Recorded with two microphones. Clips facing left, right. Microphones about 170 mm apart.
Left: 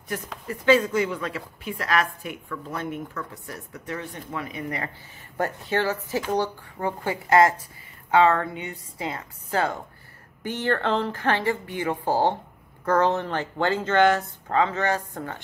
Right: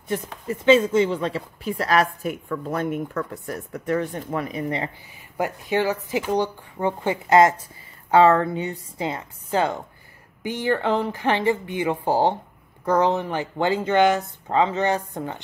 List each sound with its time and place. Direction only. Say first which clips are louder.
0.1 s speech: right 5 dB; 25° right (ahead or behind)
5.4 s speech: right 2 dB; 15° right (ahead or behind)
8.1 s a woman's voice: right 4 dB; 35° right (ahead or behind); by 15.4 s 20° right (ahead or behind)